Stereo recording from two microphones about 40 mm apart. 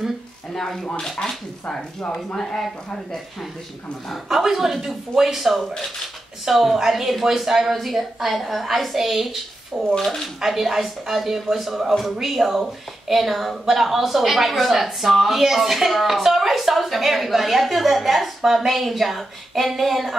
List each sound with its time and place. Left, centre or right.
0.6 s speech: centre
4.3 s a woman's voice: centre
9.7 s speech: right
10.2 s a woman's voice: centre